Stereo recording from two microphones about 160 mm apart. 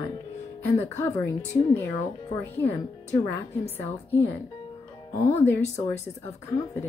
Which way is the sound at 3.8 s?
15° left (ahead or behind).